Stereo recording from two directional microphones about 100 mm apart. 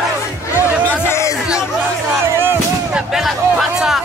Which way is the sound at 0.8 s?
25° left (ahead or behind).